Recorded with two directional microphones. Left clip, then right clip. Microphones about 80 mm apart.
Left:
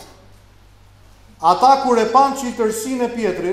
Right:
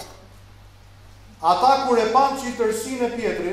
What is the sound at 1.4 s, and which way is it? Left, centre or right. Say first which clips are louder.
A man's voice: left 4 dB; left.